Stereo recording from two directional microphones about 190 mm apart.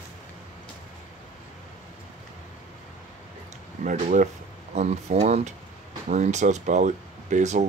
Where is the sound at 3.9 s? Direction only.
45° right (ahead or behind).